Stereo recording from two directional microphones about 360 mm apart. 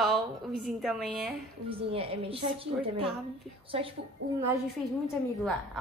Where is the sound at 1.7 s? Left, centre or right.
Centre.